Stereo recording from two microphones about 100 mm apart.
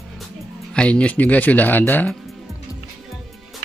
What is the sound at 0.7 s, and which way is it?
Speech, 10° left (ahead or behind).